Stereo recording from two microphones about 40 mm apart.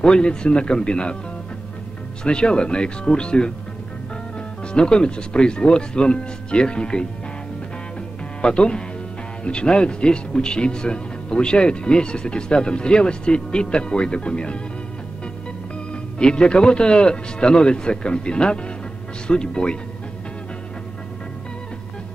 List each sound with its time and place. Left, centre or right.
0.0 s speech: centre
2.2 s speech: left
4.7 s speech: left
8.4 s speech: left
15.9 s speech: left